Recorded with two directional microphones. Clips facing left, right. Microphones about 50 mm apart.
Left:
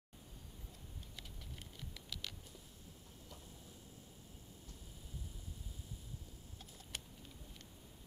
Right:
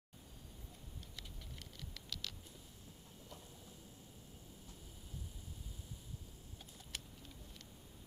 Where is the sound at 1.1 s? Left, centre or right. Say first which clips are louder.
Left 1 dB; centre.